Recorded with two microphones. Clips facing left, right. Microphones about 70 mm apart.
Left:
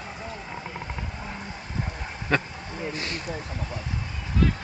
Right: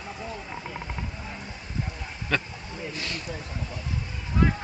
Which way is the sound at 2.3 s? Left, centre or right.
Left.